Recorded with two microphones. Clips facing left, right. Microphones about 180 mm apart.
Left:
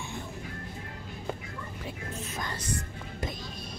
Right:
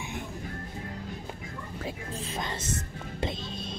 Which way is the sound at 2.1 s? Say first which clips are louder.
Right 1 dB; 30° right (ahead or behind).